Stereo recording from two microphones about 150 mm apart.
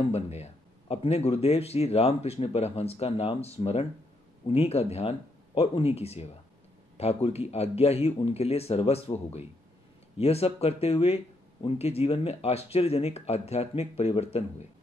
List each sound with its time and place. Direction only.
0.1 s speech: 45° left (ahead or behind)